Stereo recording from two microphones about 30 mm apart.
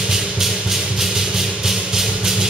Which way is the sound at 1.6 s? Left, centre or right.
Centre.